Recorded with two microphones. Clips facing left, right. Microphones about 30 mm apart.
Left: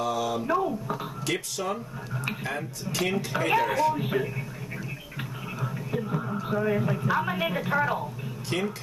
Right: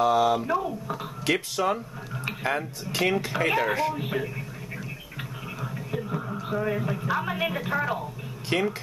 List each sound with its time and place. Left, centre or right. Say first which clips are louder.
0.0 s a sound: right 7 dB; right
0.4 s speech: left 1 dB; centre
1.3 s speech: right 5 dB; centre
5.6 s speech: left 2 dB; centre
8.5 s speech: right 4 dB; right